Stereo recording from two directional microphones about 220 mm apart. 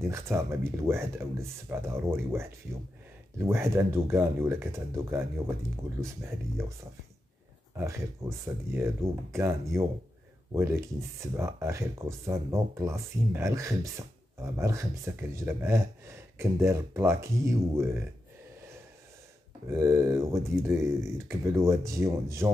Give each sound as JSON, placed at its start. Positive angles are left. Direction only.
{"t": 0.0, "sound": "speech", "side_deg": -10}
{"t": 7.7, "sound": "speech", "side_deg": -10}
{"t": 19.7, "sound": "speech", "side_deg": -10}